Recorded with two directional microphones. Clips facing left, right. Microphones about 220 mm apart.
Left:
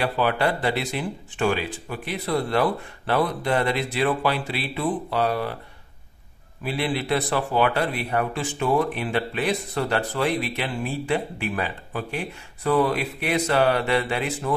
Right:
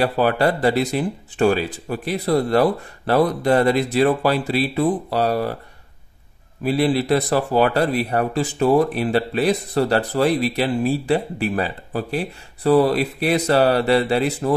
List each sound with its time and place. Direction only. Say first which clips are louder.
0.0 s speech: right 5 dB; 40° right (ahead or behind)
6.6 s speech: right 8 dB; 40° right (ahead or behind)